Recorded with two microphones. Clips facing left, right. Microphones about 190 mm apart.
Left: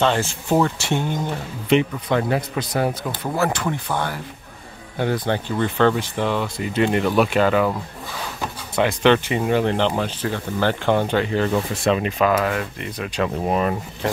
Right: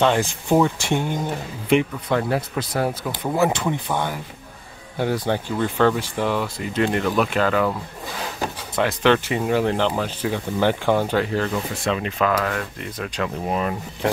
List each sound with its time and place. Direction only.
0.0 s speech: 10° right (ahead or behind)
3.3 s speech: 15° right (ahead or behind)
6.8 s speech: 10° left (ahead or behind)
8.7 s speech: centre (ahead or behind)
11.8 s speech: 20° left (ahead or behind)
13.5 s speech: 45° left (ahead or behind)